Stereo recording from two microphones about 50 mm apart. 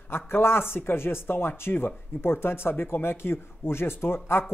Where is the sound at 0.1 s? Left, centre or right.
Left.